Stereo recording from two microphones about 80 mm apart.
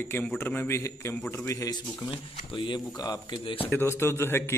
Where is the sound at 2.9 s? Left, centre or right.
Left.